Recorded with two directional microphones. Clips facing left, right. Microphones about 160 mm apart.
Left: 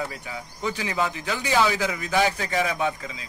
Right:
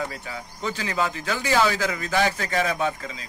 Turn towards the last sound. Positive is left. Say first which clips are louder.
# right 1 dB
turn(degrees=15)  # may be behind; listen again after turning